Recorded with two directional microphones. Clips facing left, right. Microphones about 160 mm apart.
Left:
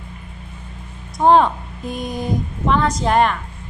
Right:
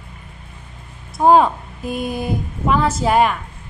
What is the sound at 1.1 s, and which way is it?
A woman's voice, 5° right (ahead or behind).